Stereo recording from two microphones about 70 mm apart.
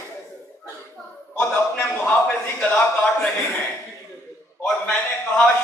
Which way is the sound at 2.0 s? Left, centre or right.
Centre.